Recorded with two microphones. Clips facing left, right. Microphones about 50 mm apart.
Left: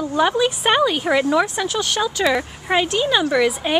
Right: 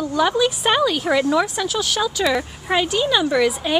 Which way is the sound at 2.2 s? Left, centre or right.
Centre.